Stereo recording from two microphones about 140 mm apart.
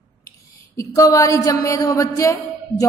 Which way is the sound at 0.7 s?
25° left (ahead or behind).